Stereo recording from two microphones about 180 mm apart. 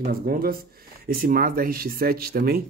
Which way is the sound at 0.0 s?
55° right (ahead or behind).